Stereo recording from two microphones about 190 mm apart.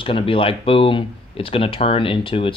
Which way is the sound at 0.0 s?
30° left (ahead or behind).